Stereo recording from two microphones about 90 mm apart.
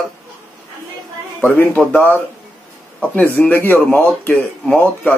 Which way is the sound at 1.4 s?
20° left (ahead or behind).